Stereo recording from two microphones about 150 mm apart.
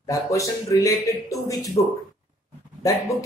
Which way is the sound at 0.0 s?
20° left (ahead or behind).